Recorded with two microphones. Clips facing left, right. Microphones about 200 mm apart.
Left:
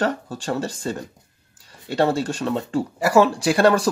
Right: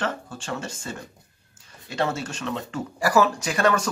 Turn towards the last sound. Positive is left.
turn(degrees=35)  # may be behind; listen again after turning